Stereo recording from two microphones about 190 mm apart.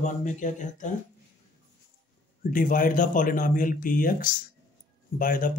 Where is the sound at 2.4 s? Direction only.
45° left (ahead or behind).